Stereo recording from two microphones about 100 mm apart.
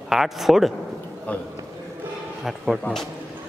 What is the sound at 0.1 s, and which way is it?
Speech, centre (ahead or behind).